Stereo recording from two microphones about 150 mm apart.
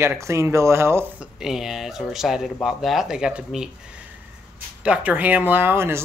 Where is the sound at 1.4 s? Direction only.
Centre (ahead or behind).